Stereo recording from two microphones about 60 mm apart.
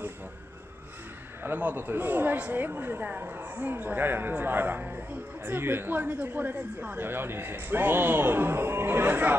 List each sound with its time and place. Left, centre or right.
1.4 s speech: right
7.1 s speech: right